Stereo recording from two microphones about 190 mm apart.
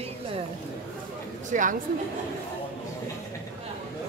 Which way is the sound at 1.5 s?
40° right (ahead or behind).